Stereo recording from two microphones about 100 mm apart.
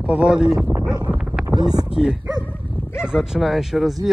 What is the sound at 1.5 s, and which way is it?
Speech, 40° right (ahead or behind).